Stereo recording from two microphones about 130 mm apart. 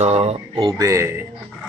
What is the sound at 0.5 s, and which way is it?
Speech, 25° right (ahead or behind).